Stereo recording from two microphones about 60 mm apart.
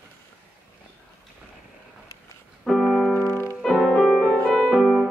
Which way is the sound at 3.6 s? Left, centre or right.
Centre.